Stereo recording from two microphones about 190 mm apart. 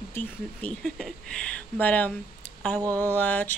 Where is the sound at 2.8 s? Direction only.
15° right (ahead or behind).